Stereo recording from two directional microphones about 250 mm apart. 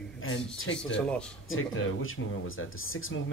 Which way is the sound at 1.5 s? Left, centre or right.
Left.